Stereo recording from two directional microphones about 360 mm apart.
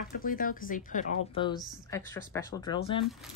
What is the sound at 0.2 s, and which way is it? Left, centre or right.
Speech, left.